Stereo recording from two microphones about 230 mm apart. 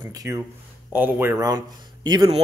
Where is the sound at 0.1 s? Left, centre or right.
Centre.